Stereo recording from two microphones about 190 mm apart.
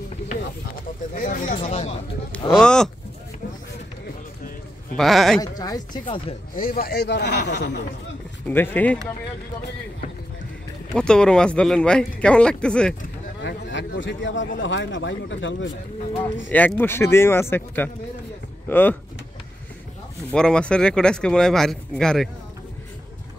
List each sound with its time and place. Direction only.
1.1 s speech: 45° left (ahead or behind)
1.6 s speech: 35° left (ahead or behind)
2.6 s speech: 5° left (ahead or behind)
4.9 s speech: centre (ahead or behind)
5.6 s speech: 25° left (ahead or behind)
6.5 s a man's voice: 45° left (ahead or behind); by 7.8 s 65° left (ahead or behind)
8.5 s speech: 10° left (ahead or behind)
11.0 s speech: 5° left (ahead or behind)
13.4 s a sound: 70° left (ahead or behind)
14.6 s speech: 75° left (ahead or behind)
16.5 s speech: 10° left (ahead or behind)
20.2 s speech: 5° left (ahead or behind)